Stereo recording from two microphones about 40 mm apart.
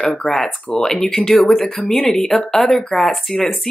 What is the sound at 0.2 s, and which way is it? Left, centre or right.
Speech, centre.